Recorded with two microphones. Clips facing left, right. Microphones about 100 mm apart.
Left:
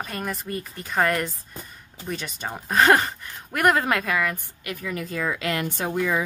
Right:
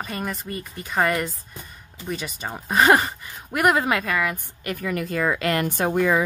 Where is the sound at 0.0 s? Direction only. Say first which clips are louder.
Right 1 dB; centre (ahead or behind).